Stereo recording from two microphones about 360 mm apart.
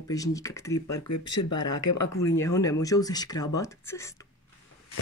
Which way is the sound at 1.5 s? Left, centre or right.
Centre.